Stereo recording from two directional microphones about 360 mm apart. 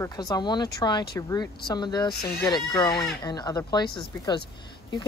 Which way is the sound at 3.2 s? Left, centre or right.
Centre.